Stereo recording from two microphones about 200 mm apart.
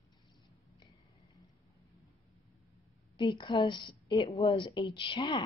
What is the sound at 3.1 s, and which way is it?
Speech, 25° left (ahead or behind).